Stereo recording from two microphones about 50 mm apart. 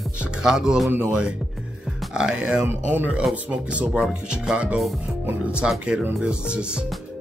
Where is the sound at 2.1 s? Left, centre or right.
Centre.